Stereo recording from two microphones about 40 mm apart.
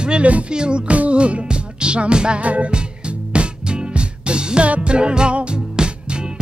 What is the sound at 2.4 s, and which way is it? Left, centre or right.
Music, right.